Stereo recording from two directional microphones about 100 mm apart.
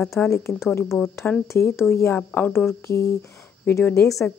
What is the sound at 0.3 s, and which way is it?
Speech, 30° left (ahead or behind).